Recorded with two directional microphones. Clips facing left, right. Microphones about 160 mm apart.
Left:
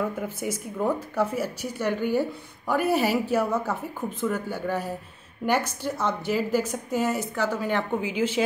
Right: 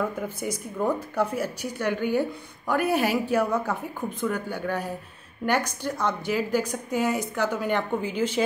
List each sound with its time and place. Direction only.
0.2 s a woman's voice: 5° left (ahead or behind)